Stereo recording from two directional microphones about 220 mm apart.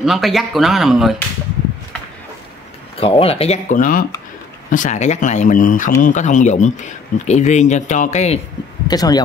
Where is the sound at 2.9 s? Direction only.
25° left (ahead or behind).